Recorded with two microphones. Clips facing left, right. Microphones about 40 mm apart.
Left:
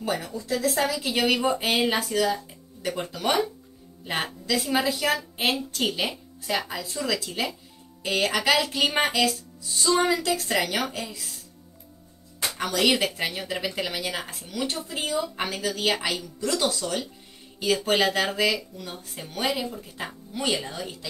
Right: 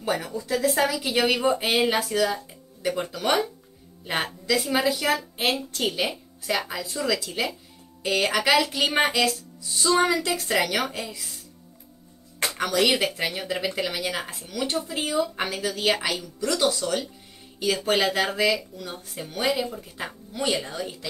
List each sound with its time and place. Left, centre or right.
0.0 s speech: centre
12.7 s speech: centre